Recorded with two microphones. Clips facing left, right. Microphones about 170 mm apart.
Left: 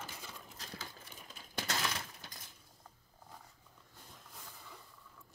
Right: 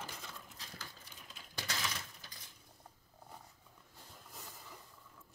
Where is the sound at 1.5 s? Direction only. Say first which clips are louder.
Left 5 dB; 50° left (ahead or behind).